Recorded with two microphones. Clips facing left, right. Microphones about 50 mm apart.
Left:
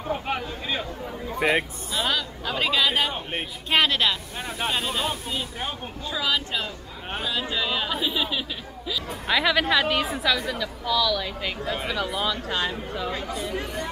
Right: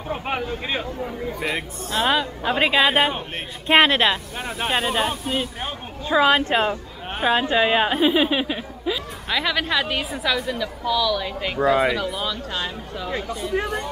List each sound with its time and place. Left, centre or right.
0.1 s speech: centre
1.4 s speech: left
1.9 s speech: right
6.0 s speech: right
9.3 s a woman's voice: centre
12.0 s speech: centre